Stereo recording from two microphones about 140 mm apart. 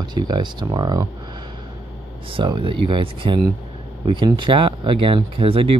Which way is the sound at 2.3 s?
35° right (ahead or behind).